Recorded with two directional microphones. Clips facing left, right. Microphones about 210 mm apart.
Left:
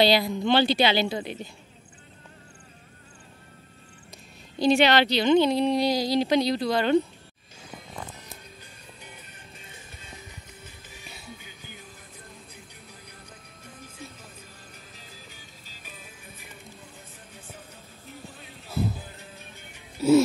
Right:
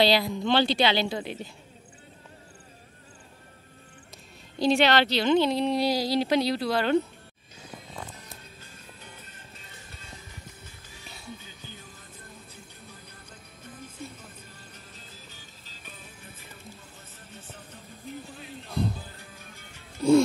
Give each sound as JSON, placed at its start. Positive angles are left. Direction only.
{"t": 0.0, "sound": "speech", "side_deg": 0}
{"t": 4.6, "sound": "speech", "side_deg": 0}
{"t": 9.0, "sound": "music", "side_deg": 15}
{"t": 11.3, "sound": "music", "side_deg": 15}
{"t": 15.2, "sound": "music", "side_deg": 10}
{"t": 18.3, "sound": "music", "side_deg": 0}
{"t": 18.9, "sound": "music", "side_deg": 20}
{"t": 20.0, "sound": "music", "side_deg": 5}